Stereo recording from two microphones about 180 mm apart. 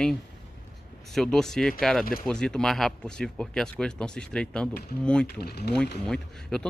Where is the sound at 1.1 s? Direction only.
Centre (ahead or behind).